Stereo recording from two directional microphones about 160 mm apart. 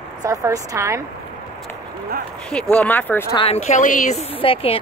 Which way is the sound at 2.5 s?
5° left (ahead or behind).